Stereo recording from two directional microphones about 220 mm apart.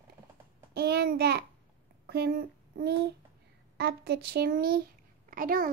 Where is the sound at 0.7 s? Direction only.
50° right (ahead or behind).